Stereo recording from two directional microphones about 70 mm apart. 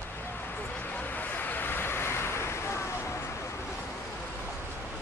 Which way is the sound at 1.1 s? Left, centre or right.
Left.